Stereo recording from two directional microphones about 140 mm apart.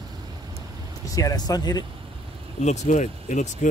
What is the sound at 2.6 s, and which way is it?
Speech, 55° left (ahead or behind).